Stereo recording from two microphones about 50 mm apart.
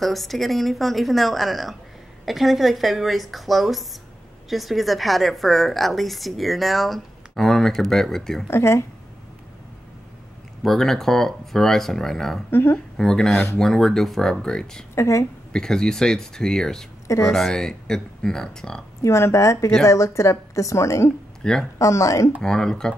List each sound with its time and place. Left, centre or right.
0.0 s a woman's voice: centre
8.5 s speech: left
10.6 s speech: centre
12.4 s speech: left
12.9 s speech: centre
14.4 s speech: centre
15.0 s a woman's voice: left
15.5 s speech: centre
18.9 s a woman's voice: left
21.4 s speech: centre
21.7 s a woman's voice: left
22.4 s speech: centre